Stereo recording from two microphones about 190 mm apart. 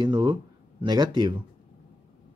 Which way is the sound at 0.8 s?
20° right (ahead or behind).